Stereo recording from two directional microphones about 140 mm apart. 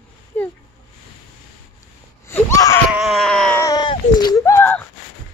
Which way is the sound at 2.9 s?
Centre (ahead or behind).